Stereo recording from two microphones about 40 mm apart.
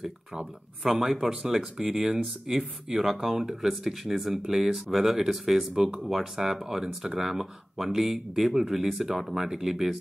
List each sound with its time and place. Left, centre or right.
0.0 s speech: centre